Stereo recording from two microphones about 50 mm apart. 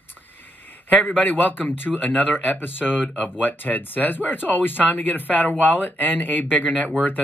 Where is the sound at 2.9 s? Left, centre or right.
Centre.